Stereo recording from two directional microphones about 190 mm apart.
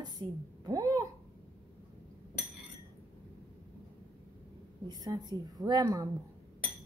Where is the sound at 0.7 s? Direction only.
15° right (ahead or behind).